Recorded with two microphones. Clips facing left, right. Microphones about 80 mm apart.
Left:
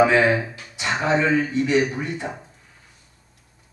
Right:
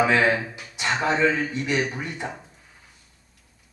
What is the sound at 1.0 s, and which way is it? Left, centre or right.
Speech, centre.